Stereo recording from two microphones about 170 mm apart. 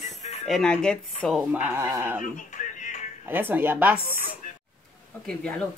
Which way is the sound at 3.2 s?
10° right (ahead or behind).